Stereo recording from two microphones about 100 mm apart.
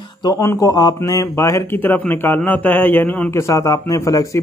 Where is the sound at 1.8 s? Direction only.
20° left (ahead or behind).